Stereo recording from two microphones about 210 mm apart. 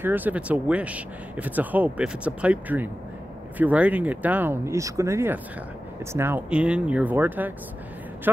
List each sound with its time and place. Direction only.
0.0 s speech: 10° right (ahead or behind)